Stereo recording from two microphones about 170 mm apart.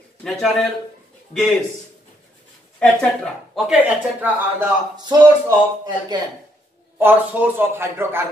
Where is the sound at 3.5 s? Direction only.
5° right (ahead or behind).